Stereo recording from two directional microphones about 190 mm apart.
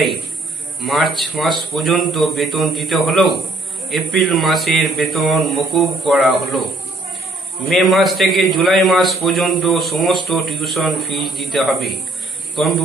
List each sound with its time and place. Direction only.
0.7 s a man's voice: centre (ahead or behind)
7.6 s a man's voice: centre (ahead or behind)